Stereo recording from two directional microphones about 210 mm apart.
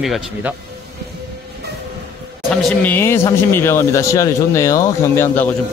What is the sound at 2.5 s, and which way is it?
Speech, 5° left (ahead or behind).